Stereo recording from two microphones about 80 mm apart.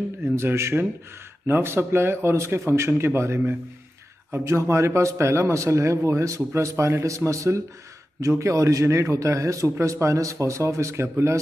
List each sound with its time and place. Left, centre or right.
0.2 s a man's voice: right